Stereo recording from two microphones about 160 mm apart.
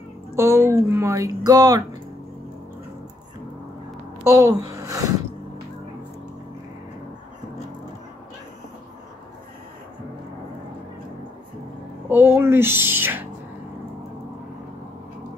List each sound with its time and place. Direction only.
0.3 s speech: 15° right (ahead or behind)
4.3 s speech: 20° right (ahead or behind)
12.1 s speech: 15° right (ahead or behind)